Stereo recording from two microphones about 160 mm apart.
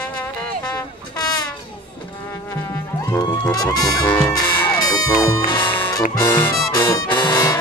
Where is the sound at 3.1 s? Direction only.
20° left (ahead or behind).